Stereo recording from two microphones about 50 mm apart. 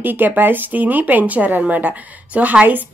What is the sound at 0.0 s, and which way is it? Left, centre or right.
A woman's voice, right.